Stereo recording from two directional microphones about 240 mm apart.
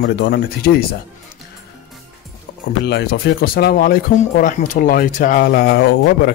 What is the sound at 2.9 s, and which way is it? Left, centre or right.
Speech, left.